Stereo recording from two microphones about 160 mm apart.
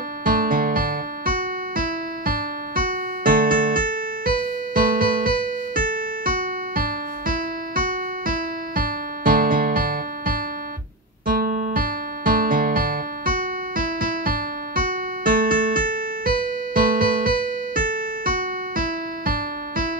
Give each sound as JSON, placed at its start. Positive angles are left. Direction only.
{"t": 0.2, "sound": "music", "side_deg": -60}